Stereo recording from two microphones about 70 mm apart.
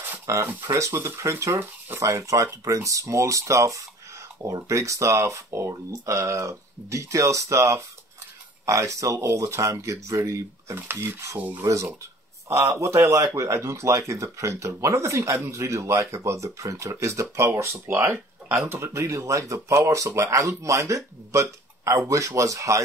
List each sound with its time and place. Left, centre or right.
0.5 s rub: right
0.9 s speech: right
10.8 s speech: right
11.3 s rub: right
11.6 s speech: right